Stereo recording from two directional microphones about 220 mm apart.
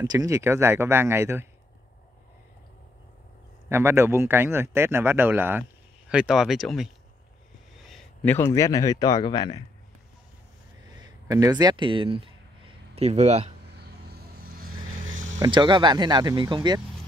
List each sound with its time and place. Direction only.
0.0 s speech: 15° right (ahead or behind)
3.6 s speech: 10° right (ahead or behind)
7.9 s a man's voice: 10° left (ahead or behind)
11.0 s a sound: 15° right (ahead or behind)
13.7 s vehicle: 45° right (ahead or behind)
15.0 s vehicle: 60° right (ahead or behind)
15.3 s speech: 20° right (ahead or behind)